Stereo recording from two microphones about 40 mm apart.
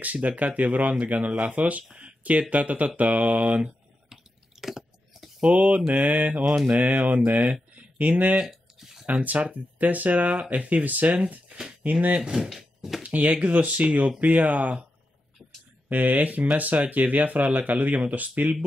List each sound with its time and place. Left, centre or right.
0.0 s speech: right
0.3 s speech: right
0.6 s speech: right
4.1 s chewing: centre
5.4 s speech: right
6.5 s speech: centre
6.8 s speech: right
8.4 s a sound: centre
9.2 s speech: right
12.2 s speech: centre
13.1 s speech: right
13.4 s speech: right
14.2 s speech: right
15.9 s speech: right